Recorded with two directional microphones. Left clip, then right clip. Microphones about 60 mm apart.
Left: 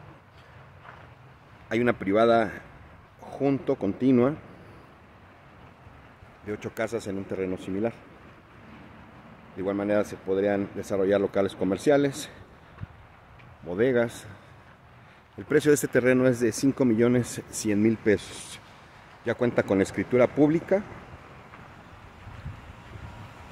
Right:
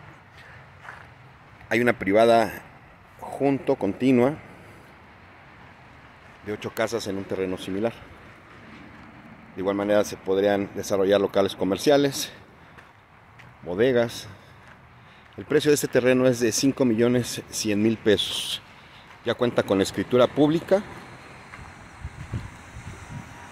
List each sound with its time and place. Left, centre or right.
1.7 s speech: centre
3.2 s a sound: centre
3.6 s speech: centre
6.4 s speech: centre
9.6 s speech: centre
13.7 s speech: centre
14.0 s speech: left
15.4 s speech: left
16.7 s speech: left
17.8 s speech: centre
19.2 s speech: left